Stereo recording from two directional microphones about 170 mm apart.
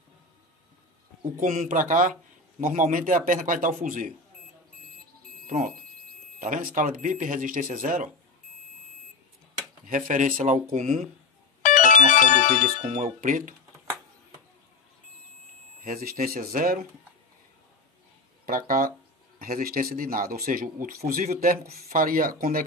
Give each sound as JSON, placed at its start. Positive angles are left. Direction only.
{"t": 1.4, "sound": "speech", "side_deg": -50}
{"t": 5.5, "sound": "speech", "side_deg": -55}
{"t": 9.8, "sound": "speech", "side_deg": -50}
{"t": 11.6, "sound": "speech", "side_deg": 50}
{"t": 12.8, "sound": "speech", "side_deg": -45}
{"t": 15.8, "sound": "speech", "side_deg": -60}
{"t": 18.4, "sound": "speech", "side_deg": -60}